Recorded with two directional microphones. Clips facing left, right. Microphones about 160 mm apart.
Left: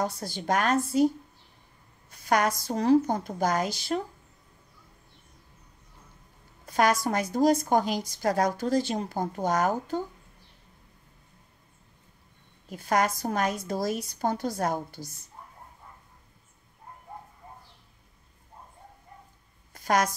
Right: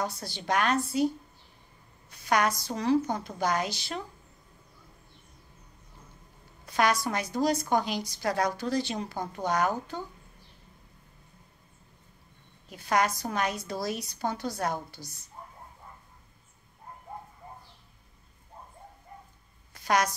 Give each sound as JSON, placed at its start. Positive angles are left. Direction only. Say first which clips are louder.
{"t": 0.0, "sound": "a woman's voice", "louder": "left 3 dB", "side_deg": 45}
{"t": 6.6, "sound": "a woman's voice", "louder": "left 2 dB", "side_deg": 45}
{"t": 12.6, "sound": "a woman's voice", "louder": "left 1 dB", "side_deg": 45}
{"t": 19.7, "sound": "a sound", "louder": "left 1 dB", "side_deg": 45}